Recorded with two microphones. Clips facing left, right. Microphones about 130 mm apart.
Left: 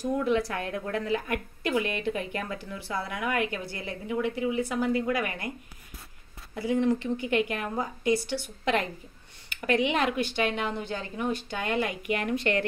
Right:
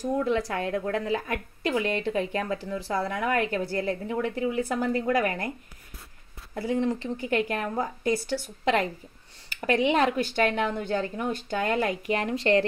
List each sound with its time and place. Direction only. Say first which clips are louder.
0.0 s a woman's voice: even; 25° right (ahead or behind); by 5.5 s 40° right (ahead or behind)
6.5 s a woman's voice: left 1 dB; 30° right (ahead or behind)